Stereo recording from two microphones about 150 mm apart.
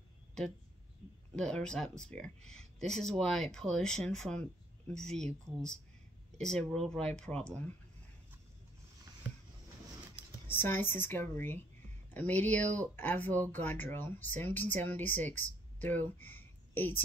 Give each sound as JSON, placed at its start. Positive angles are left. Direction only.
{"t": 1.3, "sound": "speech", "side_deg": 5}
{"t": 6.5, "sound": "speech", "side_deg": 5}
{"t": 10.5, "sound": "speech", "side_deg": 15}